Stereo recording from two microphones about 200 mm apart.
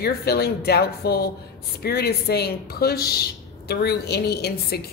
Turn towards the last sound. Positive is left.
turn(degrees=55)  # may be behind; listen again after turning